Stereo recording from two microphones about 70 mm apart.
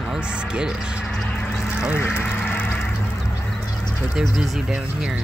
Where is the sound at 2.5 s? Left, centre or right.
Left.